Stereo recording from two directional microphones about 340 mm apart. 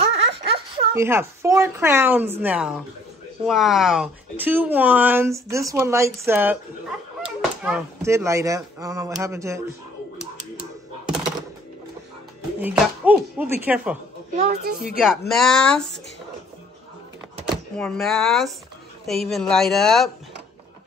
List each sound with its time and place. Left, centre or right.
0.0 s a sound: centre
0.5 s speech: centre
7.6 s speech: centre
12.5 s speech: centre
14.3 s a woman's voice: centre
15.0 s speech: centre
17.7 s speech: centre